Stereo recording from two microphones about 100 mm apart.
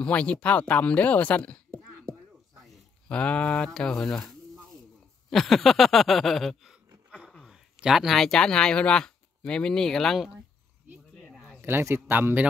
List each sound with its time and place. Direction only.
0.0 s speech: 10° left (ahead or behind)
2.6 s speech: 10° left (ahead or behind)
5.3 s speech: centre (ahead or behind)
11.6 s a man's voice: 25° right (ahead or behind)